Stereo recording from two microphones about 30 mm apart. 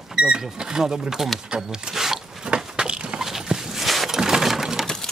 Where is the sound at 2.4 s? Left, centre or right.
Right.